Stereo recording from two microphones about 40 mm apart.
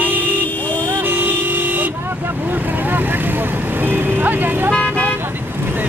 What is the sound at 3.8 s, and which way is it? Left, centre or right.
Vehicle, right.